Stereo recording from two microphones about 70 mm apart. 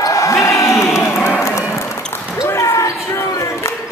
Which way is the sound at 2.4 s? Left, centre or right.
Left.